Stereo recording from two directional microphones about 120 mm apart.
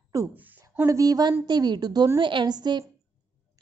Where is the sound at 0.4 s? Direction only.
15° right (ahead or behind).